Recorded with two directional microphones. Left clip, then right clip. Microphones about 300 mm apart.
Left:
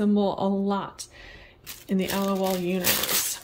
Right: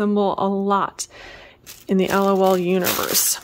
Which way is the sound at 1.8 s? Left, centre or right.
Centre.